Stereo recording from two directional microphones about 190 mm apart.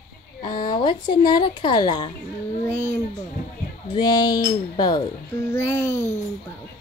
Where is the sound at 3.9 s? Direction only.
20° left (ahead or behind).